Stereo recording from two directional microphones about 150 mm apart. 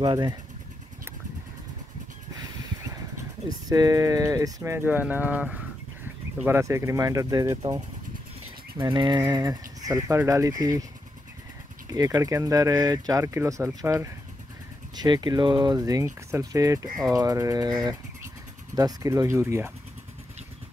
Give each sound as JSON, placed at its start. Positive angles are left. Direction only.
{"t": 0.0, "sound": "speech", "side_deg": -30}
{"t": 2.9, "sound": "speech", "side_deg": -25}
{"t": 8.9, "sound": "speech", "side_deg": -30}
{"t": 11.9, "sound": "speech", "side_deg": -25}